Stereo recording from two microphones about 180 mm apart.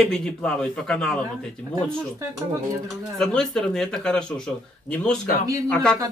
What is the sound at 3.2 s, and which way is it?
Speech, 5° left (ahead or behind).